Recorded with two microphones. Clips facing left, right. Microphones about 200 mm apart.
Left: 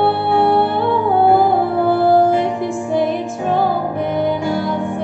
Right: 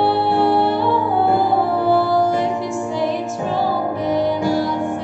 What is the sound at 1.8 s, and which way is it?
Music, 55° left (ahead or behind).